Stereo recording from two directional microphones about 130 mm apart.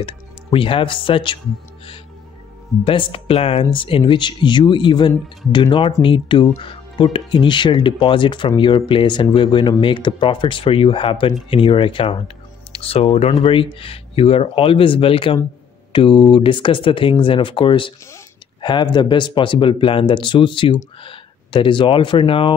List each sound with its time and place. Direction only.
0.0 s speech: 45° left (ahead or behind)
2.8 s speech: 45° left (ahead or behind)